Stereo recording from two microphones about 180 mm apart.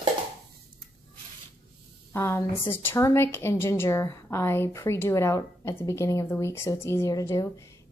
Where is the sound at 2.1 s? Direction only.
15° left (ahead or behind).